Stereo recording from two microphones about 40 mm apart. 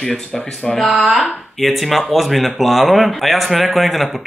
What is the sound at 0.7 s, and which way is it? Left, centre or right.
Speech, centre.